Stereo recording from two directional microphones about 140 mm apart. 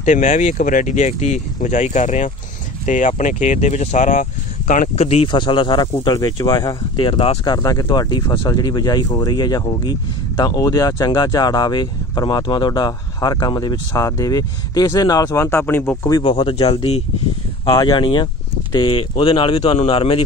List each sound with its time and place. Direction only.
0.0 s speech: 60° left (ahead or behind)
5.3 s speech: 35° left (ahead or behind)
7.5 s speech: 25° left (ahead or behind)
16.1 s speech: 30° left (ahead or behind)
17.6 s speech: 30° left (ahead or behind)